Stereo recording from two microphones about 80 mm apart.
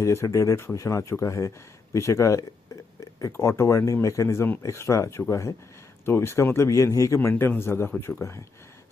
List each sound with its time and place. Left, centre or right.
0.0 s speech: left
7.2 s a man's voice: left